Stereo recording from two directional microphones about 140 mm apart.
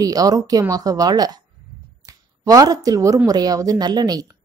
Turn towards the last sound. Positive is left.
turn(degrees=-25)  # may be behind; listen again after turning